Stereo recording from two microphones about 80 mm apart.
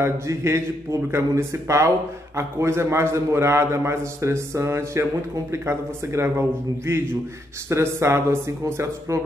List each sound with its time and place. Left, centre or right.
0.0 s a man's voice: right
7.7 s a man's voice: right